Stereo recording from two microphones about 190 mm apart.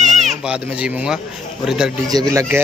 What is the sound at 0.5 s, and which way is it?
A man's voice, 5° right (ahead or behind).